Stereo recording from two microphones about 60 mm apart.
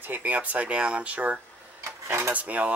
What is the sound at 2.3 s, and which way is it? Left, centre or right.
Speech, right.